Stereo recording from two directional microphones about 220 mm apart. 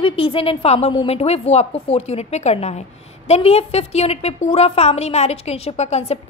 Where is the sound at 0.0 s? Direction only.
25° left (ahead or behind).